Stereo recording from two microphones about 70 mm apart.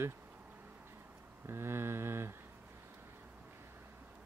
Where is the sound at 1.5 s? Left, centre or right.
Right.